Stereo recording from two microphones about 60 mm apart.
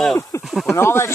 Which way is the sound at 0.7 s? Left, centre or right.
Left.